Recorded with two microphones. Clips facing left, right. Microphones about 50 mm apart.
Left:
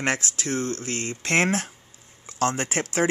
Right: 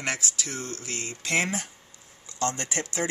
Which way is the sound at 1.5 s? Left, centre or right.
Left.